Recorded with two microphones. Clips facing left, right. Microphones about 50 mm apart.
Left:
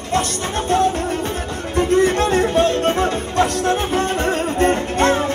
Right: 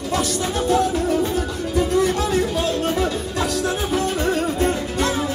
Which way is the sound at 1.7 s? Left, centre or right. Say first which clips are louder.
Left 4 dB; left.